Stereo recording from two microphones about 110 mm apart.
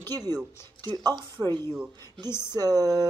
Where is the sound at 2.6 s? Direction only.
35° right (ahead or behind).